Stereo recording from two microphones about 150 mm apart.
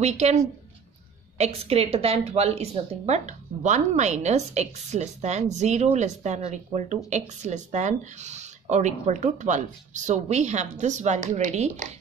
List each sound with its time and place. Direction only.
0.0 s a woman's voice: 45° right (ahead or behind)
1.4 s a woman's voice: 40° right (ahead or behind)